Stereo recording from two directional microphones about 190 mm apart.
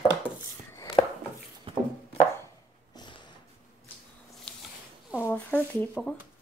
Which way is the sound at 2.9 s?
25° left (ahead or behind).